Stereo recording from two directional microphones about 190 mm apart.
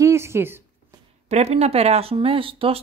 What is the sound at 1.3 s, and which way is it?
Speech, 35° right (ahead or behind).